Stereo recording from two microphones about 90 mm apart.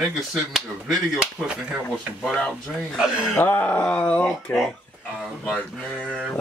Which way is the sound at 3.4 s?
15° left (ahead or behind).